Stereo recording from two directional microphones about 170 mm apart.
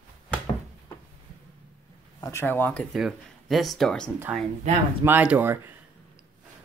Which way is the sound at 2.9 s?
Centre (ahead or behind).